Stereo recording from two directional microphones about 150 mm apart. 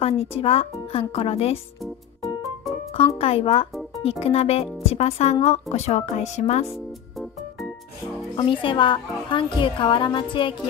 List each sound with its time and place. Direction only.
0.0 s a woman's voice: 40° left (ahead or behind)
1.8 s music: centre (ahead or behind)
3.2 s a woman's voice: 40° left (ahead or behind)
6.7 s music: centre (ahead or behind)
8.4 s a woman's voice: 35° left (ahead or behind)